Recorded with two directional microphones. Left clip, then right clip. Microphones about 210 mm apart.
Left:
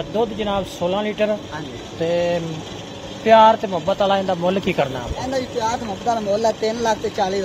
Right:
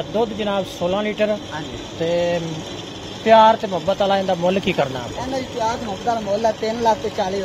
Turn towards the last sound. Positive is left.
turn(degrees=45)  # may be behind; listen again after turning